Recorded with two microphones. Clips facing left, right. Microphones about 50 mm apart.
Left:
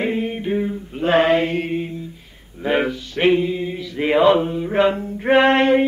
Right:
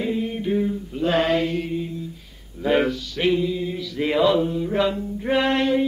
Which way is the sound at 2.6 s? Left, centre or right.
Left.